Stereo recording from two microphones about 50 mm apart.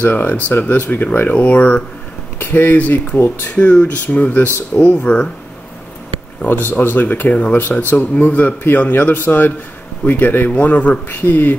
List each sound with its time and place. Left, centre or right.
0.0 s speech: left
2.3 s speech: left
3.2 s speech: left
3.5 s speech: left
4.9 s a man's voice: centre
6.6 s speech: left
8.3 s a man's voice: left
8.6 s speech: left